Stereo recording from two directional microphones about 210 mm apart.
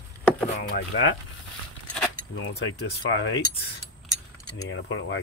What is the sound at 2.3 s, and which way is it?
Cutlery, 65° left (ahead or behind).